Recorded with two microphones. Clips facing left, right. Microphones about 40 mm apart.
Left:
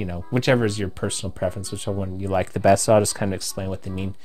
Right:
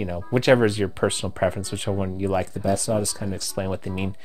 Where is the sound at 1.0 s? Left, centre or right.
Right.